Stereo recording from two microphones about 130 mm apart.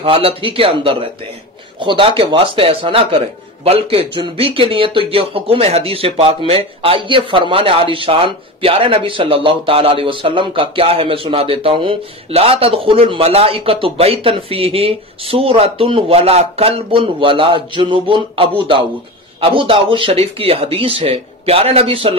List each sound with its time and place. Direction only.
0.0 s speech: 45° right (ahead or behind)